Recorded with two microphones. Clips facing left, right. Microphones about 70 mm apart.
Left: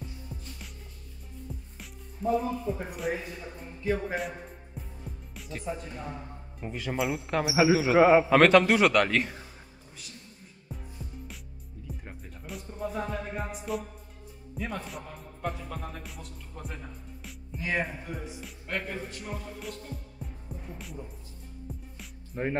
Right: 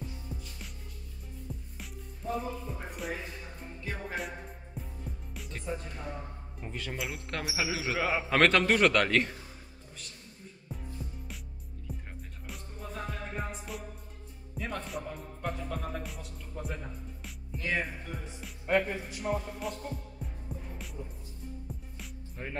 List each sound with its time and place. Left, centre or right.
0.3 s music: centre
1.5 s music: centre
2.3 s a man's voice: centre
7.5 s speech: centre
8.2 s a man's voice: centre
11.9 s music: centre
14.5 s a man's voice: centre
17.6 s speech: centre
18.7 s speech: centre
20.7 s music: centre
22.3 s speech: left